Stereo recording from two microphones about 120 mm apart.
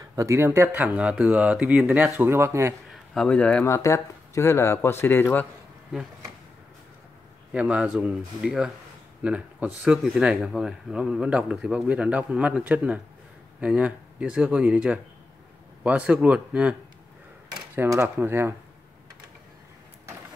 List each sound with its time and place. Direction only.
0.1 s speech: 25° right (ahead or behind)
2.9 s a sound: 5° left (ahead or behind)
3.6 s speech: 25° left (ahead or behind)
7.5 s speech: 10° right (ahead or behind)
17.7 s speech: 15° right (ahead or behind)